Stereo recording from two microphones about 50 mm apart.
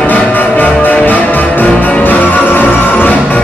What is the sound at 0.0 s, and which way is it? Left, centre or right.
Music, left.